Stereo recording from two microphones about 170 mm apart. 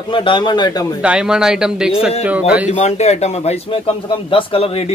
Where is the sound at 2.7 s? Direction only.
40° left (ahead or behind).